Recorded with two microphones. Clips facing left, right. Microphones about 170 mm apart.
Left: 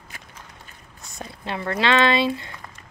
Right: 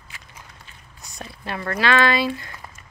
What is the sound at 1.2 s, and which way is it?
Speech, 20° left (ahead or behind).